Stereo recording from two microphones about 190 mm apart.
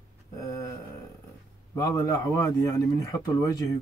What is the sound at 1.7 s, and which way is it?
Speech, 15° left (ahead or behind).